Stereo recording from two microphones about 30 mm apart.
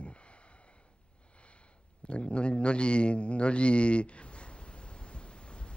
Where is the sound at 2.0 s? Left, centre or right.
Left.